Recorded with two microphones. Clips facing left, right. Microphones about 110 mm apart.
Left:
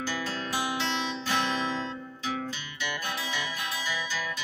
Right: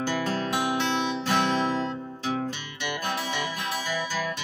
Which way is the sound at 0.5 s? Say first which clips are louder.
Right 2 dB; 55° right (ahead or behind).